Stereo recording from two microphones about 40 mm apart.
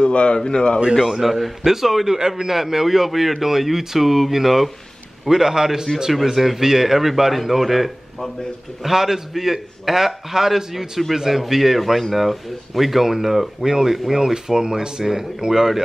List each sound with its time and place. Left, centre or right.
0.0 s speech: left
1.2 s a man's voice: centre